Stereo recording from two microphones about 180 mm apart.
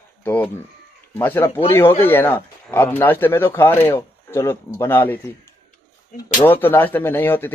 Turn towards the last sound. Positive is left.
turn(degrees=10)  # may be behind; listen again after turning